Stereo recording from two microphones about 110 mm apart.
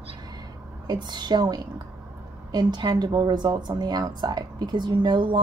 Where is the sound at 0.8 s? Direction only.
40° right (ahead or behind).